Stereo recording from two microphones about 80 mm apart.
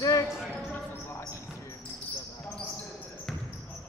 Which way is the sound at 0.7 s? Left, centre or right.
Left.